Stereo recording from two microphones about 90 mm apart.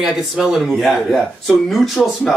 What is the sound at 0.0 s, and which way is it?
Speech, 5° right (ahead or behind).